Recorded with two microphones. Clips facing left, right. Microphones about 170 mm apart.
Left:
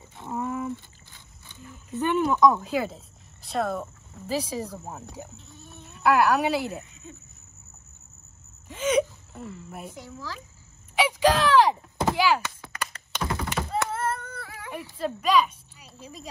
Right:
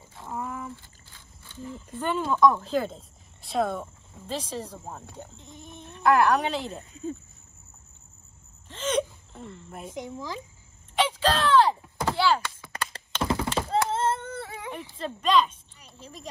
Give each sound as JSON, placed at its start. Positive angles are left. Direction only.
{"t": 0.2, "sound": "a sound", "side_deg": 25}
{"t": 1.5, "sound": "speech", "side_deg": 10}
{"t": 5.4, "sound": "chicken", "side_deg": -15}
{"t": 5.8, "sound": "a woman's voice", "side_deg": 5}
{"t": 6.8, "sound": "speech", "side_deg": -30}
{"t": 8.6, "sound": "gasp", "side_deg": 10}
{"t": 9.9, "sound": "speech", "side_deg": -15}
{"t": 11.0, "sound": "a sound", "side_deg": 10}
{"t": 13.3, "sound": "thunk", "side_deg": -25}
{"t": 14.7, "sound": "a woman's voice", "side_deg": 10}